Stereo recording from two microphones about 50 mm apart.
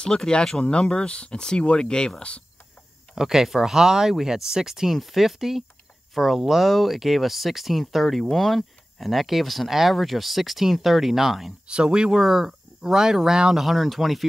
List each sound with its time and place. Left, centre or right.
0.0 s speech: centre
3.2 s speech: centre
11.6 s speech: centre
12.2 s speech: centre
13.7 s speech: centre